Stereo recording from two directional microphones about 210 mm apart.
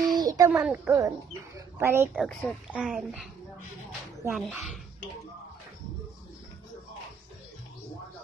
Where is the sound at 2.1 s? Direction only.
5° left (ahead or behind).